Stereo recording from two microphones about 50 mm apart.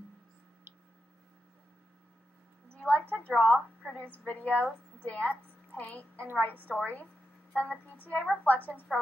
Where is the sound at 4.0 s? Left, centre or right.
Left.